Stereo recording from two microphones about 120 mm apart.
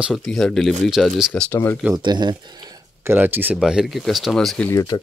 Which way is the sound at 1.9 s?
35° right (ahead or behind).